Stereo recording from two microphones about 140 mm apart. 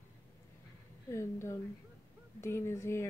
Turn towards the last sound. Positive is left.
turn(degrees=20)  # may be behind; listen again after turning